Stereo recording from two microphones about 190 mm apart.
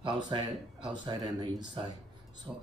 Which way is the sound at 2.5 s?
5° right (ahead or behind).